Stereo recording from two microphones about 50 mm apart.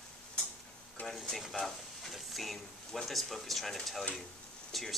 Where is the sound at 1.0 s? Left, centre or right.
Left.